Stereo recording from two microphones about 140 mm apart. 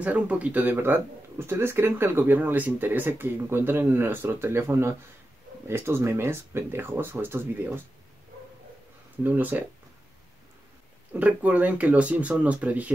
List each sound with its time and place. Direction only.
0.0 s speech: 10° right (ahead or behind)
9.2 s speech: 15° right (ahead or behind)
11.1 s speech: 10° right (ahead or behind)